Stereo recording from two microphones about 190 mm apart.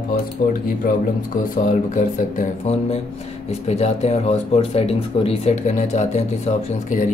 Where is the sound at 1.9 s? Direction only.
35° left (ahead or behind).